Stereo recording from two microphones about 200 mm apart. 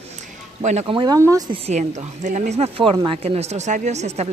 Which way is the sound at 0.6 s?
35° right (ahead or behind).